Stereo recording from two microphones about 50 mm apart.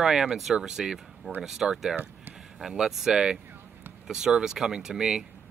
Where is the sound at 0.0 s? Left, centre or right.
Centre.